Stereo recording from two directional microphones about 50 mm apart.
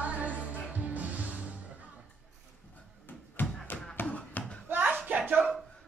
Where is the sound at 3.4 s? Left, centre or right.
Left.